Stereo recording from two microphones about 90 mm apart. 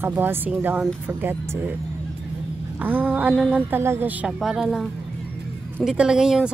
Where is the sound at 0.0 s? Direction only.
25° right (ahead or behind).